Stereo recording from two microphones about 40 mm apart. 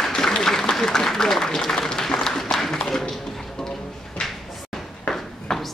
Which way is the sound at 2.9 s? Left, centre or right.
Centre.